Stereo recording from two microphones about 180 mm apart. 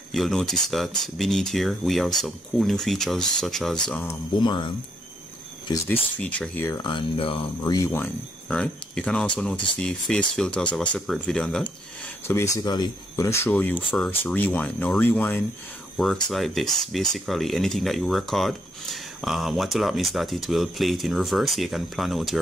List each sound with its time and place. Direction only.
0.1 s speech: centre (ahead or behind)
3.9 s speech: 15° left (ahead or behind)
4.4 s speech: 25° left (ahead or behind)
6.1 s speech: 5° left (ahead or behind)
6.8 s speech: 30° left (ahead or behind); by 11.7 s 5° left (ahead or behind)
12.3 s speech: 15° left (ahead or behind); by 22.4 s centre (ahead or behind)